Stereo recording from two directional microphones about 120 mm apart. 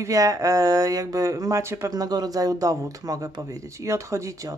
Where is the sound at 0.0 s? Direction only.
30° right (ahead or behind).